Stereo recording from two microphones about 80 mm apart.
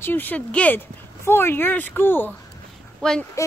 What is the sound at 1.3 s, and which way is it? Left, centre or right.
Speech, left.